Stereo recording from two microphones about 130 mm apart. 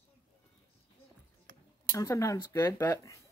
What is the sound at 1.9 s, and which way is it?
Speech, 25° left (ahead or behind).